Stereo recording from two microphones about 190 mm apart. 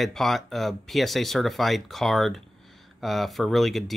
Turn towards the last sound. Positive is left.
turn(degrees=0)  # may be behind; listen again after turning